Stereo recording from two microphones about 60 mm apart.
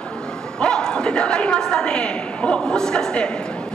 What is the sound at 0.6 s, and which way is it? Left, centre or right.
A woman's voice, centre.